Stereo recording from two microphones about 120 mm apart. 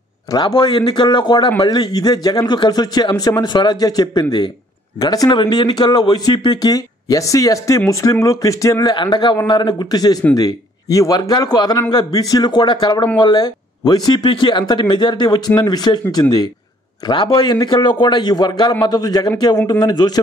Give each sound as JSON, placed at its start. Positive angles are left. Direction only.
{"t": 0.3, "sound": "speech", "side_deg": 35}
{"t": 8.9, "sound": "speech", "side_deg": 40}